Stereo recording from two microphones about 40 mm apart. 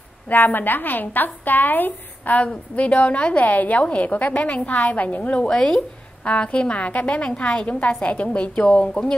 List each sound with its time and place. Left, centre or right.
0.3 s a woman's voice: left
3.4 s a woman's voice: left
5.4 s speech: centre
6.2 s a woman's voice: left